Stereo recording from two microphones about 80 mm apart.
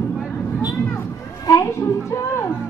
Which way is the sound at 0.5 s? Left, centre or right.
Left.